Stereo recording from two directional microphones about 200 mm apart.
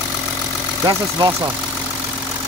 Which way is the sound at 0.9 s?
20° right (ahead or behind).